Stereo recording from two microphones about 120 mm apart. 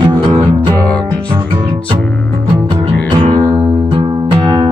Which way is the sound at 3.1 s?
40° right (ahead or behind).